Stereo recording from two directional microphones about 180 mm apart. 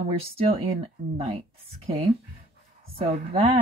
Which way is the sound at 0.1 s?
35° right (ahead or behind).